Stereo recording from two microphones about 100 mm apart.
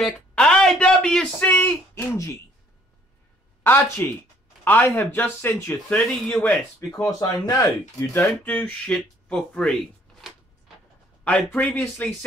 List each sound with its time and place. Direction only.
0.3 s speech: 10° left (ahead or behind)
1.5 s speech: 20° left (ahead or behind)
3.6 s speech: 20° left (ahead or behind)
6.9 s speech: 40° left (ahead or behind)
8.5 s speech: 15° left (ahead or behind)
11.2 s speech: 10° left (ahead or behind)